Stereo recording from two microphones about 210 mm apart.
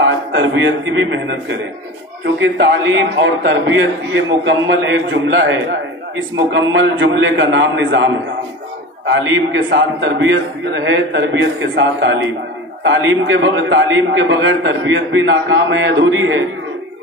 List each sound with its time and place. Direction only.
0.3 s a man's voice: 60° right (ahead or behind)
9.1 s a man's voice: 65° right (ahead or behind)